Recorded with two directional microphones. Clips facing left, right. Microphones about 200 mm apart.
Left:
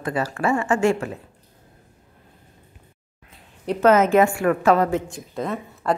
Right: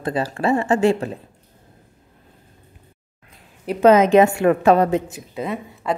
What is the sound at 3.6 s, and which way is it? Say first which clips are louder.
A woman's voice: right 3 dB; 15° right (ahead or behind).